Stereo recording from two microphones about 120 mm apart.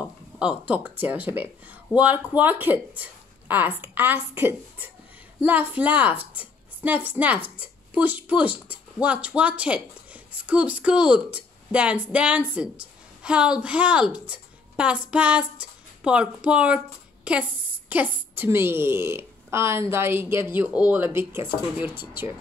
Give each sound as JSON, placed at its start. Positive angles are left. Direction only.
{"t": 0.0, "sound": "a woman's voice", "side_deg": -10}